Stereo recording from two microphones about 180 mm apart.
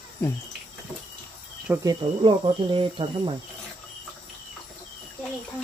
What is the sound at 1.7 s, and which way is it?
Speech, 20° right (ahead or behind).